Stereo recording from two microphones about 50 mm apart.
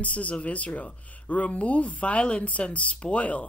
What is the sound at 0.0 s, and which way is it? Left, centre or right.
Speech, left.